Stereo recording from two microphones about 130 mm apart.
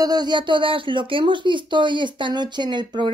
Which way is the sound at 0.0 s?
30° right (ahead or behind).